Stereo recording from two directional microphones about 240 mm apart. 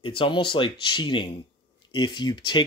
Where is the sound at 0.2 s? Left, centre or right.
Left.